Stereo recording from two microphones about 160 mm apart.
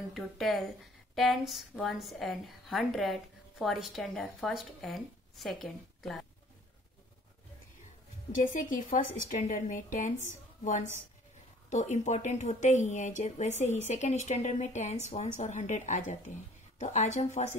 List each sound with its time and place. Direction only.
0.2 s a woman's voice: centre (ahead or behind)
8.5 s a woman's voice: 55° left (ahead or behind)